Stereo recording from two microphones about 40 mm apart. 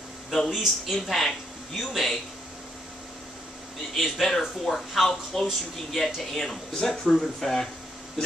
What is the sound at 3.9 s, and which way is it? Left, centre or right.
Speech, centre.